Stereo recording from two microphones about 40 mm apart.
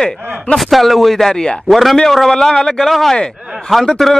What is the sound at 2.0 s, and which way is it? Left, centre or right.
Speech, centre.